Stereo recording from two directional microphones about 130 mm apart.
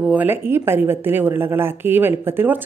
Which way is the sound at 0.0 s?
10° right (ahead or behind).